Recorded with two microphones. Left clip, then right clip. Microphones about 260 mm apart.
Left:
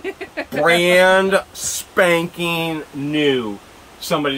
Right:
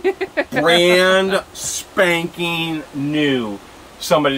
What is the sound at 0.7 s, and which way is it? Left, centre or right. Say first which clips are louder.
Speech: left 1 dB; centre.